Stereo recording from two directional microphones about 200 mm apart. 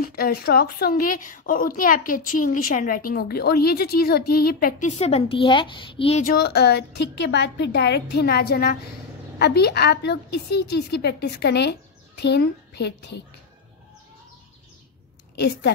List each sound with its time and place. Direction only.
0.0 s a woman's voice: 50° left (ahead or behind); by 6.2 s 30° left (ahead or behind)
6.2 s a woman's voice: 50° left (ahead or behind)
15.3 s a woman's voice: 55° left (ahead or behind)